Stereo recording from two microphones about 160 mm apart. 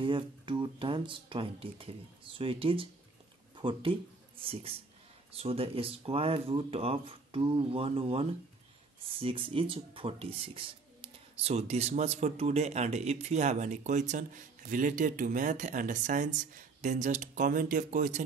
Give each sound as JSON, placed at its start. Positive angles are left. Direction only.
{"t": 0.0, "sound": "speech", "side_deg": -30}